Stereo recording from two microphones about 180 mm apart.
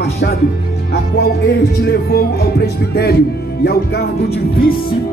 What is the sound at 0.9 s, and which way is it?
Music, 65° left (ahead or behind).